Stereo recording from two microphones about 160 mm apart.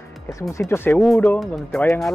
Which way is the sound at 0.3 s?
20° left (ahead or behind).